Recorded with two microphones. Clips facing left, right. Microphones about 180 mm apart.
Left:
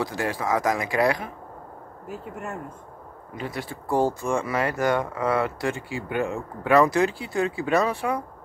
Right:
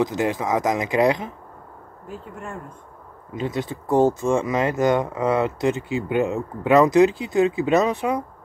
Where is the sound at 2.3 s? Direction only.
5° left (ahead or behind).